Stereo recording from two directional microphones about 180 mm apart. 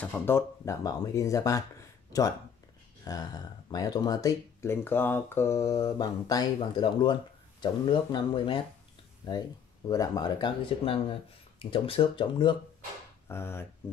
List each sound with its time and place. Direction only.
0.0 s speech: 10° left (ahead or behind)
3.1 s speech: 20° left (ahead or behind)
9.8 s speech: 20° left (ahead or behind)
13.3 s speech: 15° left (ahead or behind)